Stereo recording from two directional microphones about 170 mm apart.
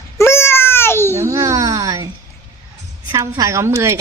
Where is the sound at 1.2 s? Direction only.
20° right (ahead or behind).